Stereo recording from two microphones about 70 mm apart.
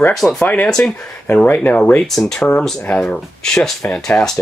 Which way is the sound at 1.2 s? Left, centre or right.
Left.